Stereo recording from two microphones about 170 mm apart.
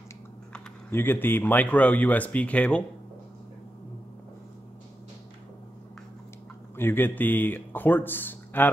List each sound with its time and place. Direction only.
0.5 s speech: 10° left (ahead or behind)
6.8 s speech: 10° left (ahead or behind)